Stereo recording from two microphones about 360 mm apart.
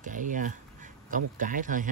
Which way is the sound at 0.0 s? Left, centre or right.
Right.